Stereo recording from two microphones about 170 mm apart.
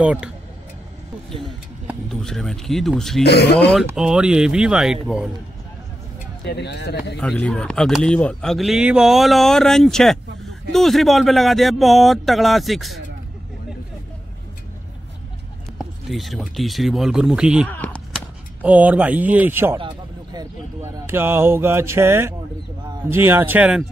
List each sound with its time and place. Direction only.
0.0 s speech: 5° right (ahead or behind)
2.0 s speech: centre (ahead or behind)
3.3 s speech: 80° left
3.9 s speech: 5° right (ahead or behind)
6.4 s speech: 80° left
7.2 s speech: 5° left (ahead or behind)
16.1 s speech: centre (ahead or behind)
17.6 s speech: 10° left (ahead or behind)
18.6 s speech: 10° right (ahead or behind)